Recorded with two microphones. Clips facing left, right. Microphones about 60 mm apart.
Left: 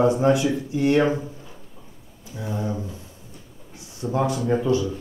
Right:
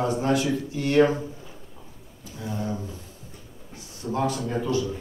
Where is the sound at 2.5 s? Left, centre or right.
Left.